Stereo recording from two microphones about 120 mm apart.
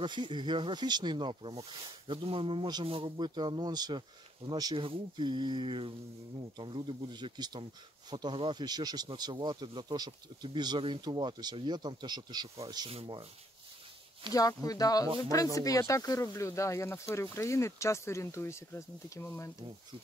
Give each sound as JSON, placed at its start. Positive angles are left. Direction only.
{"t": 0.0, "sound": "speech", "side_deg": -40}
{"t": 1.5, "sound": "speech", "side_deg": -55}
{"t": 4.7, "sound": "speech", "side_deg": -45}
{"t": 12.9, "sound": "speech", "side_deg": -50}
{"t": 14.3, "sound": "speech", "side_deg": 30}